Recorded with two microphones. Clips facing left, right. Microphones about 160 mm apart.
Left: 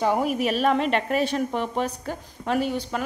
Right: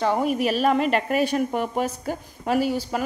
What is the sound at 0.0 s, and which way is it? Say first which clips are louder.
A woman's voice: right 1 dB; 5° left (ahead or behind).